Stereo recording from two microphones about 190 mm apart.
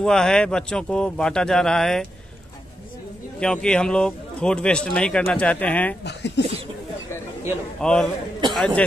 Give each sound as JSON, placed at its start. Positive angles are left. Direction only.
{"t": 0.0, "sound": "a man's voice", "side_deg": 5}
{"t": 3.3, "sound": "a man's voice", "side_deg": 5}
{"t": 6.0, "sound": "speech", "side_deg": 65}
{"t": 7.8, "sound": "a man's voice", "side_deg": 5}